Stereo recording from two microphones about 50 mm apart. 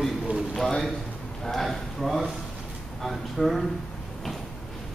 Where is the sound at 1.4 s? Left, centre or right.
Centre.